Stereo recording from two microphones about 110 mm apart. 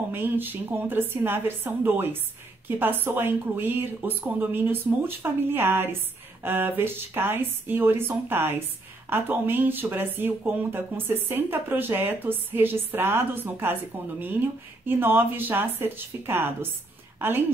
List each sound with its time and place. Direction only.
0.1 s speech: 20° right (ahead or behind)
14.9 s a woman's voice: 20° right (ahead or behind)